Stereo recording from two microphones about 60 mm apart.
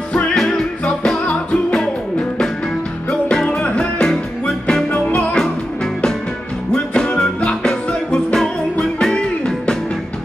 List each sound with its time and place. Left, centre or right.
1.2 s music: left
6.7 s music: centre